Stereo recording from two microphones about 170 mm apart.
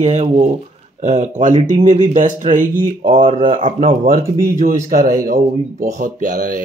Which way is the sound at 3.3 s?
30° right (ahead or behind).